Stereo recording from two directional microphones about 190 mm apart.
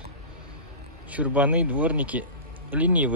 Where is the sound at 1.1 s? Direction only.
5° right (ahead or behind).